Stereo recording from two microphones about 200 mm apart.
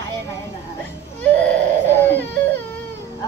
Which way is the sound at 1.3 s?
10° left (ahead or behind).